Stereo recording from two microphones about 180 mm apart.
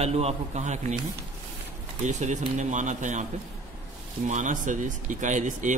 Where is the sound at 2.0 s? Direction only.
40° right (ahead or behind).